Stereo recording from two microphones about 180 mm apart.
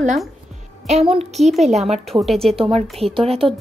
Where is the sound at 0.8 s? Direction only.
35° right (ahead or behind).